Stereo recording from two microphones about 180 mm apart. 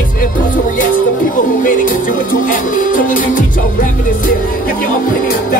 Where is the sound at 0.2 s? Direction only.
50° left (ahead or behind).